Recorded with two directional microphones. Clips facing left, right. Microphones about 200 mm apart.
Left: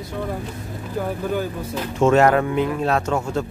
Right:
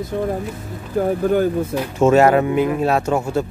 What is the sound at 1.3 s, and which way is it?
Speech, 55° right (ahead or behind).